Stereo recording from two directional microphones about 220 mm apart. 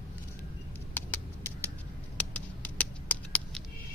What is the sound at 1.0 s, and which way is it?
Patter, 10° left (ahead or behind).